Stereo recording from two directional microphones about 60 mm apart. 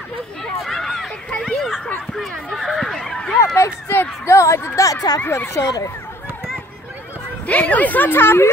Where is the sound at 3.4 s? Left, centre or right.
Left.